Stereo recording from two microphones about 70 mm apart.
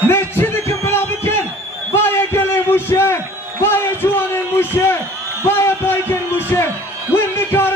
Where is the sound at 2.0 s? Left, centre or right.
Left.